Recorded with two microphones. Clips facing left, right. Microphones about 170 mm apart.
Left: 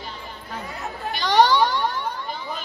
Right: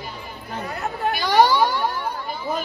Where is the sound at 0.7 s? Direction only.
60° right (ahead or behind).